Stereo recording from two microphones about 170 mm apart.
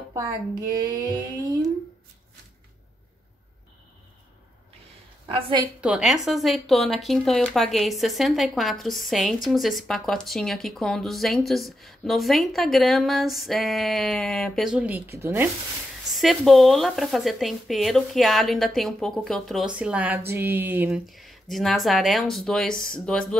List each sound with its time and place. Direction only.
0.1 s speech: 20° right (ahead or behind)
5.8 s speech: 5° right (ahead or behind)
16.1 s speech: centre (ahead or behind)
21.1 s speech: centre (ahead or behind)